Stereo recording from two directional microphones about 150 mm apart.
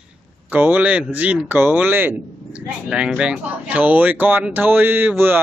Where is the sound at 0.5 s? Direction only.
10° right (ahead or behind).